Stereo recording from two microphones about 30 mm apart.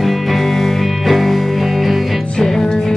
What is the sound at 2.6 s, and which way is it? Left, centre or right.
Music, left.